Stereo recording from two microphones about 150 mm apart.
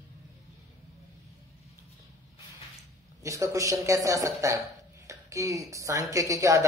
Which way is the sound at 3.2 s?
20° right (ahead or behind).